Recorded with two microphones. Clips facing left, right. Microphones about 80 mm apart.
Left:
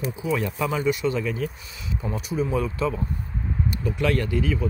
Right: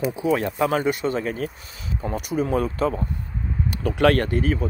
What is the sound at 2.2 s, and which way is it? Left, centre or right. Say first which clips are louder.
Speech: right 3 dB; right.